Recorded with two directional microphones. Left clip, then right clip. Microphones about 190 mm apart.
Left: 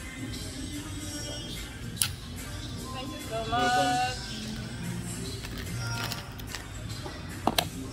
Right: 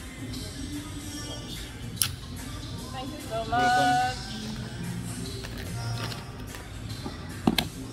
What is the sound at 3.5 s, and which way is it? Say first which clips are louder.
Male singing: right 3 dB; centre (ahead or behind).